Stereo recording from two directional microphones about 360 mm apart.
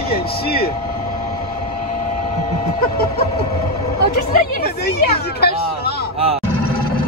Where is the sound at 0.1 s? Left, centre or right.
Left.